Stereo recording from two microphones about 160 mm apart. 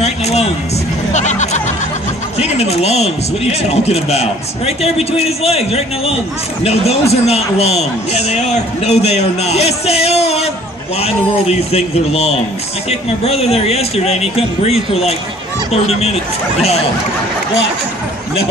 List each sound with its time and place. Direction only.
0.0 s a sound: 40° left (ahead or behind)
1.1 s music: 45° left (ahead or behind)
2.3 s a man's voice: 40° left (ahead or behind)